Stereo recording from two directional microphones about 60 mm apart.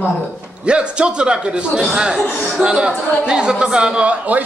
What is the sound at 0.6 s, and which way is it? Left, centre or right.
Speech, centre.